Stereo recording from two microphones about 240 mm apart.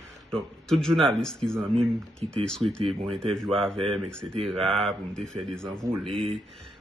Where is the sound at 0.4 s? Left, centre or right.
Centre.